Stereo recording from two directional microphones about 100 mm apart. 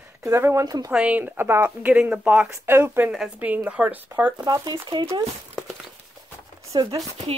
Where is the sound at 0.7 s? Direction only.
40° right (ahead or behind).